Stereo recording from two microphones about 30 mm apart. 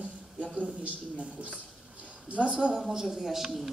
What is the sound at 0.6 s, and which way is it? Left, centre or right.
A man's voice, right.